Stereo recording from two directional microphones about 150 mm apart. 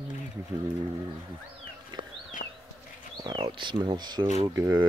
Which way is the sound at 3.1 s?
25° right (ahead or behind).